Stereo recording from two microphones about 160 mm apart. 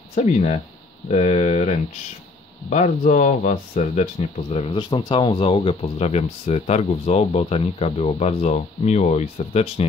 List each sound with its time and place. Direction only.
0.1 s speech: 45° left (ahead or behind)